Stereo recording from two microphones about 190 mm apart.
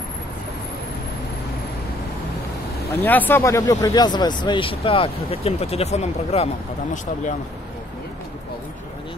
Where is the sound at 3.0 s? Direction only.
10° left (ahead or behind); by 6.5 s 35° left (ahead or behind).